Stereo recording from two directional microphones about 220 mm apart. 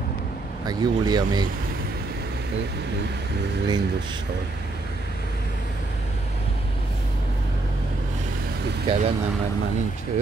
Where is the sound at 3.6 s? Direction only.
20° right (ahead or behind).